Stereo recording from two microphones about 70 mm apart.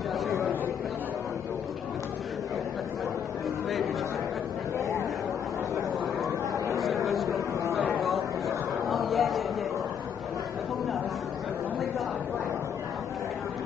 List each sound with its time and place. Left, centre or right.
5.8 s chatter: right
8.0 s chatter: centre